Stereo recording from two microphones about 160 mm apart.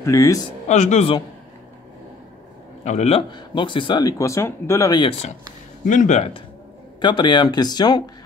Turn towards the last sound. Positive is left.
turn(degrees=25)  # may be behind; listen again after turning